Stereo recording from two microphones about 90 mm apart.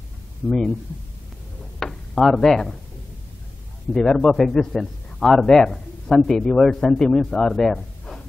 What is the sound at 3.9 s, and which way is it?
A man's voice, 5° left (ahead or behind).